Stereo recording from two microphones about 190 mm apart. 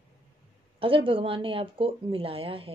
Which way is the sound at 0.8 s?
30° right (ahead or behind).